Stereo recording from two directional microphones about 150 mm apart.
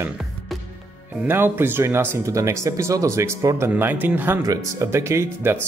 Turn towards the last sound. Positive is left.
turn(degrees=-15)  # may be behind; listen again after turning